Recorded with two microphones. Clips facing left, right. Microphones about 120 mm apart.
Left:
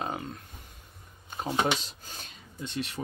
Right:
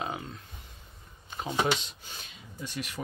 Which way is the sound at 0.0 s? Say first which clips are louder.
Left 1 dB; 45° left (ahead or behind).